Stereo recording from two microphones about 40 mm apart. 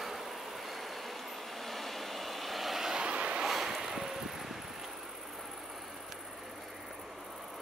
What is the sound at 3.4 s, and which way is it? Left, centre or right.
Boat, centre.